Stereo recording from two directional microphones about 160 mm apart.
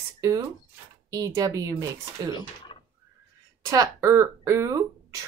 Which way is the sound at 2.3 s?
30° left (ahead or behind).